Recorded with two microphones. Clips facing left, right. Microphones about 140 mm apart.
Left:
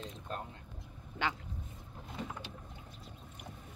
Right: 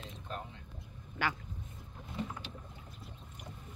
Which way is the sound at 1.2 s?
20° left (ahead or behind).